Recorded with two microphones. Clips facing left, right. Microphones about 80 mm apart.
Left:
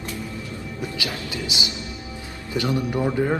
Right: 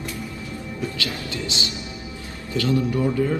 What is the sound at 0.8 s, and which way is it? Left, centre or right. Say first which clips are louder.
A man's voice: right 1 dB; centre.